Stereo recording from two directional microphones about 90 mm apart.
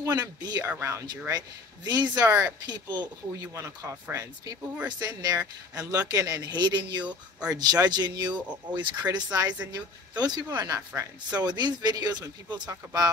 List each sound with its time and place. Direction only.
0.0 s speech: 45° right (ahead or behind)
0.7 s speech: 30° right (ahead or behind)
1.9 s speech: 50° right (ahead or behind)
3.5 s speech: 35° right (ahead or behind)
4.8 s speech: 45° right (ahead or behind)
7.1 s speech: 10° right (ahead or behind)
7.5 s speech: 50° right (ahead or behind)